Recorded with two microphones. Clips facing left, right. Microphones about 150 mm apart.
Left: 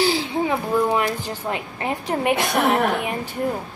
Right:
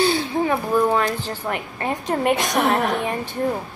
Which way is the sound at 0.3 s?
15° left (ahead or behind).